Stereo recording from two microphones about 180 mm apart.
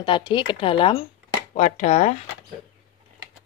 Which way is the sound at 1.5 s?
45° left (ahead or behind).